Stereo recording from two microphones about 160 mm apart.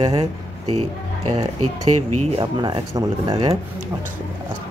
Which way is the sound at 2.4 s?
25° right (ahead or behind).